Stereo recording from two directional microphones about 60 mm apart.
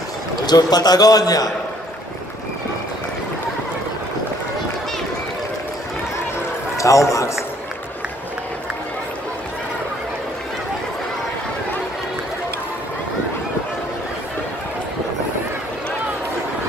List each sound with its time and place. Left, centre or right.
0.6 s a man's voice: left
6.8 s a man's voice: left